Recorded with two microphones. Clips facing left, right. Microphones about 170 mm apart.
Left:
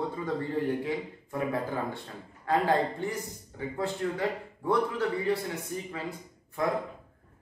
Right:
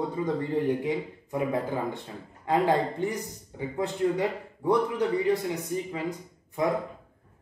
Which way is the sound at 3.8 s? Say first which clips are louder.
Right 5 dB; 20° right (ahead or behind).